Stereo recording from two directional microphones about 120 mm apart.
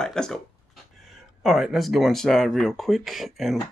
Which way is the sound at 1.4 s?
5° right (ahead or behind).